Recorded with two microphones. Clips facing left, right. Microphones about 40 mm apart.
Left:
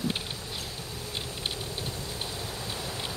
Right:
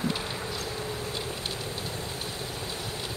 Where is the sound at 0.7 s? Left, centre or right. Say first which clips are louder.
Right 6 dB; right.